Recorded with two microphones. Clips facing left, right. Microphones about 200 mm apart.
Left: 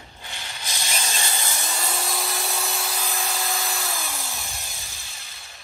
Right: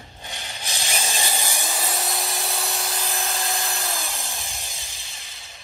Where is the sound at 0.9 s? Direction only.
15° right (ahead or behind).